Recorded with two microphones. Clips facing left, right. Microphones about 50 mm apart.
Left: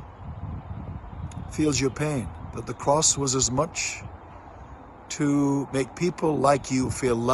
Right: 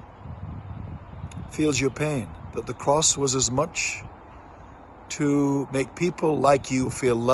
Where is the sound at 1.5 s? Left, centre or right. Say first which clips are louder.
Right 1 dB; right.